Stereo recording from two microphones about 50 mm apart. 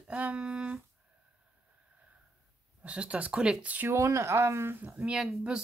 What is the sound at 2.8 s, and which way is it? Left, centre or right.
Speech, right.